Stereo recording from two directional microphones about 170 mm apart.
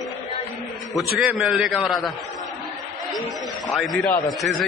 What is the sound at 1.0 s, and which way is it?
A man's voice, centre (ahead or behind).